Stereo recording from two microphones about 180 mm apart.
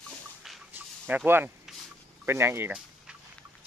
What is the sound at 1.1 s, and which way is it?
Speech, 10° right (ahead or behind).